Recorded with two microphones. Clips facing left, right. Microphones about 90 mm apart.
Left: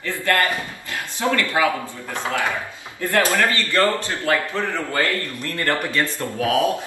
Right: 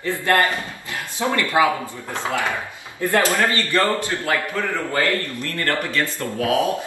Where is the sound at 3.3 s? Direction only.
20° right (ahead or behind).